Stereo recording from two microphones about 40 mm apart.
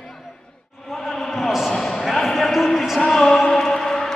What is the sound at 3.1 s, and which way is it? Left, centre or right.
Music, centre.